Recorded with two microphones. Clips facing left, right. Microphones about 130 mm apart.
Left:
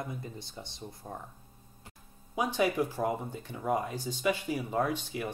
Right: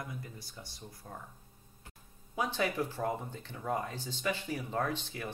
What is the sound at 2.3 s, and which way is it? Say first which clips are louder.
Speech: left 4 dB; 15° left (ahead or behind).